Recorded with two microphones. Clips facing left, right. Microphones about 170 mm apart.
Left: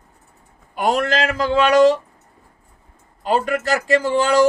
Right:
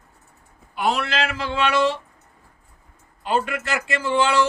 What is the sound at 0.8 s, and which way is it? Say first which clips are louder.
Speech: left 4 dB; 45° left (ahead or behind).